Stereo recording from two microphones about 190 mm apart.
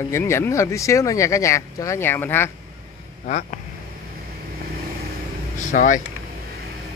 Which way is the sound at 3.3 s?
40° left (ahead or behind).